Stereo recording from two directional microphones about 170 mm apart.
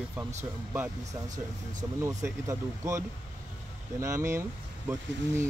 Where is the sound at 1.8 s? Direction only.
20° right (ahead or behind).